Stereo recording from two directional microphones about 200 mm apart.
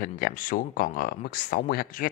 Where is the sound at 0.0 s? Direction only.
45° left (ahead or behind).